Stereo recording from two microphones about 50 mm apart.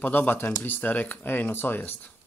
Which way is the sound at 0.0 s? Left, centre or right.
Left.